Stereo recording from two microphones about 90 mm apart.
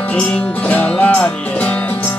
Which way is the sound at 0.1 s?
15° left (ahead or behind).